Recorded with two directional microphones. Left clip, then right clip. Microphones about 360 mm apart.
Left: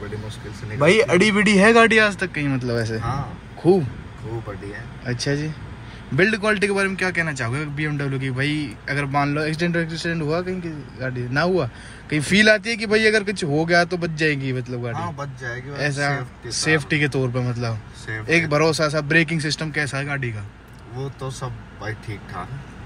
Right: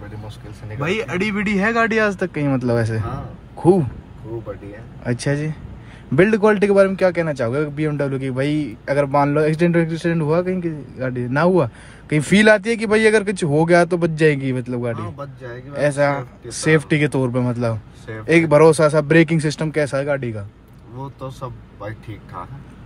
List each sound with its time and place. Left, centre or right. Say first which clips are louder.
0.7 s speech: left 7 dB; centre
5.1 s a man's voice: right 2 dB; centre
15.8 s a man's voice: right 6 dB; centre